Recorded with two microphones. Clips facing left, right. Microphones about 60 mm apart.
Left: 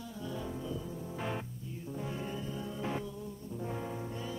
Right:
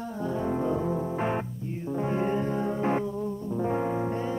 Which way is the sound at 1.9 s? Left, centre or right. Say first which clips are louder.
Right 13 dB; right.